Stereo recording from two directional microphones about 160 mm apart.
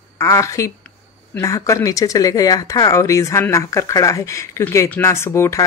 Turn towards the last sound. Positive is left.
turn(degrees=15)  # may be behind; listen again after turning